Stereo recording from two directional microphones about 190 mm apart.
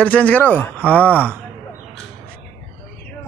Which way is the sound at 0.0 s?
5° left (ahead or behind).